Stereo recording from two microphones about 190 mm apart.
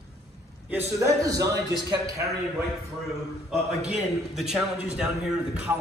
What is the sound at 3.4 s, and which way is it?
A man's voice, centre (ahead or behind).